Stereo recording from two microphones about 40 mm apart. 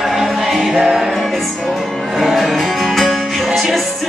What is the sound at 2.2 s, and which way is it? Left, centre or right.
Music, centre.